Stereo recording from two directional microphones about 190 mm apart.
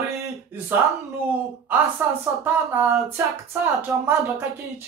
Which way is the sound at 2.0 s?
10° right (ahead or behind).